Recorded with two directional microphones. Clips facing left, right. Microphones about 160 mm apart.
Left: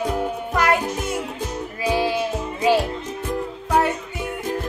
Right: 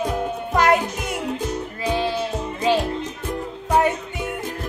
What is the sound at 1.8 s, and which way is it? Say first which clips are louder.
Music: left 2 dB; 10° left (ahead or behind).